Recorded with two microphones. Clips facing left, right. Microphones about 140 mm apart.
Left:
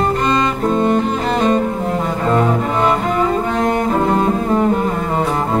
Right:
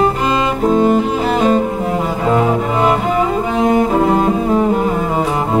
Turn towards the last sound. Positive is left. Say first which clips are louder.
# right 1 dB
turn(degrees=-5)  # may be behind; listen again after turning